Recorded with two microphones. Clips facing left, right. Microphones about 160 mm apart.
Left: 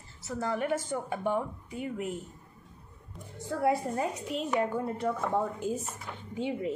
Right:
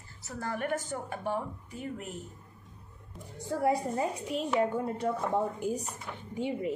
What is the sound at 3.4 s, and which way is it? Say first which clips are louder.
Speech: even; 15° right (ahead or behind).